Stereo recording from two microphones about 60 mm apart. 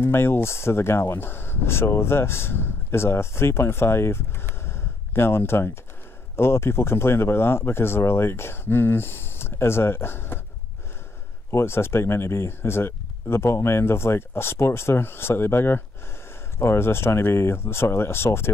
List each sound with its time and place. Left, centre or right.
0.0 s speech: left
11.5 s speech: left